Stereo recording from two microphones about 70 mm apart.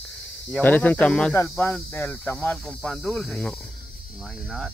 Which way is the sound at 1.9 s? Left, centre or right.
Left.